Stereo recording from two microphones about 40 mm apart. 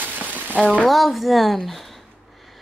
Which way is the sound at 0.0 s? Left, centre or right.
Right.